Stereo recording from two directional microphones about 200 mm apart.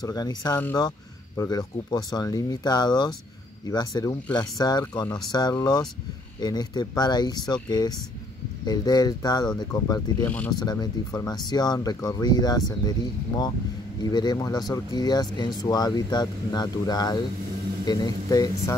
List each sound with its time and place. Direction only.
0.0 s speech: 20° left (ahead or behind)
10.2 s speech: 5° left (ahead or behind)
10.5 s speech: 20° left (ahead or behind)
14.0 s speech: 20° left (ahead or behind)